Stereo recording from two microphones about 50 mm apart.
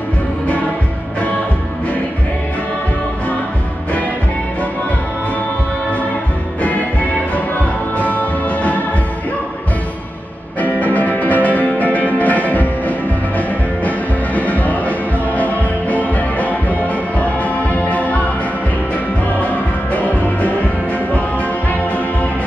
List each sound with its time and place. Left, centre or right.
8.0 s music: left
10.6 s music: left
19.4 s music: left